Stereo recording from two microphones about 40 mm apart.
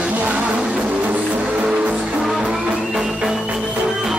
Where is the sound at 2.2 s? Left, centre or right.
Centre.